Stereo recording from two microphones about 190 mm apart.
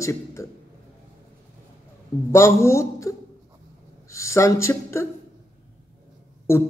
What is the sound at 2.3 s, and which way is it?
A man's voice, 15° left (ahead or behind).